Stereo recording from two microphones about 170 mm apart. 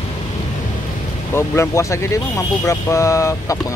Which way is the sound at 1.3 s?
15° left (ahead or behind).